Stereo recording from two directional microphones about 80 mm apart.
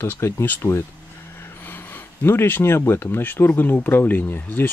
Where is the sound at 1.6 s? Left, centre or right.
Left.